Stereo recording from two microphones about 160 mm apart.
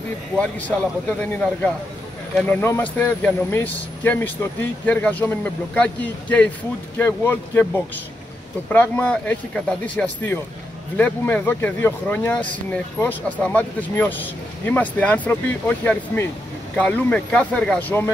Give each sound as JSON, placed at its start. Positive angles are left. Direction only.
{"t": 0.4, "sound": "speech", "side_deg": 10}
{"t": 2.3, "sound": "speech", "side_deg": 10}